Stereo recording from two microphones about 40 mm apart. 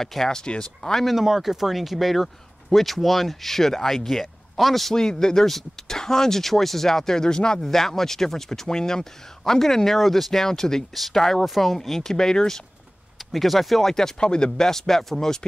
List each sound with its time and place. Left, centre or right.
0.0 s speech: centre
1.0 s speech: centre
4.9 s speech: centre
13.3 s speech: centre
14.2 s speech: left